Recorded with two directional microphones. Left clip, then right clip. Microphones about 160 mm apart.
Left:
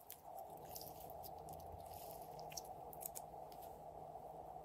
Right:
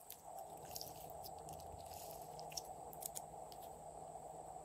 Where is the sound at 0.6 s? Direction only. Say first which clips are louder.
Right 2 dB; centre (ahead or behind).